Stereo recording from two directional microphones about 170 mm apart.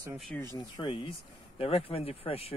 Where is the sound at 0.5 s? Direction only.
30° left (ahead or behind).